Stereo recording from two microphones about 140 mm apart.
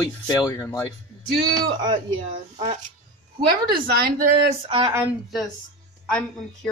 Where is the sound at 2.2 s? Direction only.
55° right (ahead or behind).